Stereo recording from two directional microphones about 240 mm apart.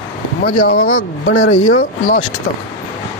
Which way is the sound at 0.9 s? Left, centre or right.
Left.